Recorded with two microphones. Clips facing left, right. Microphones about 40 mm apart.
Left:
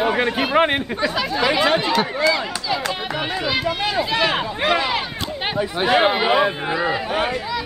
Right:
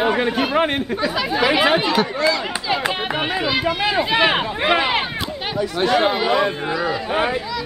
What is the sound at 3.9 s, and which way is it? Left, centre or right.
Speech, right.